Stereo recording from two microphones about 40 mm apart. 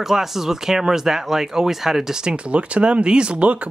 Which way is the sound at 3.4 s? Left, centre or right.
Right.